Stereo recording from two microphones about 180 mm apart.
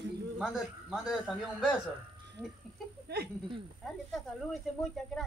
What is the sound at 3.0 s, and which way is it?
Speech, 65° right (ahead or behind).